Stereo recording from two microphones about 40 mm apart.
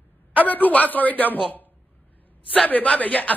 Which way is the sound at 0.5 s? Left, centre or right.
Left.